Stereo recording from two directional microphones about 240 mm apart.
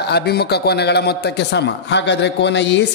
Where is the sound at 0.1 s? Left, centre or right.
Left.